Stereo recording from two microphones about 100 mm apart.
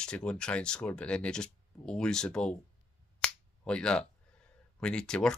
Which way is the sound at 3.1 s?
10° left (ahead or behind).